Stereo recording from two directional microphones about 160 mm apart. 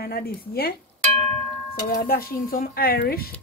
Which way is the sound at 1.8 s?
65° left (ahead or behind).